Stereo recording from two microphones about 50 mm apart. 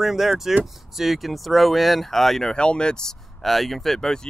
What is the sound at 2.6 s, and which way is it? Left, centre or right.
Speech, centre.